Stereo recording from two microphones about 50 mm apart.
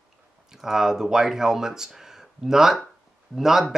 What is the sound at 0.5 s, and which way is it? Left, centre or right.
Speech, centre.